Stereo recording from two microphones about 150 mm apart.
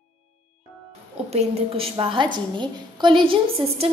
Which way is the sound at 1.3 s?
40° right (ahead or behind).